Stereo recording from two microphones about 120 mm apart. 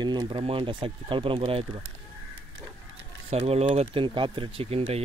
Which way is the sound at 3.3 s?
60° right (ahead or behind).